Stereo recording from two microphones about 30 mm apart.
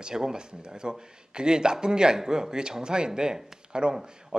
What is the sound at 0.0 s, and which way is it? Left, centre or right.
Speech, right.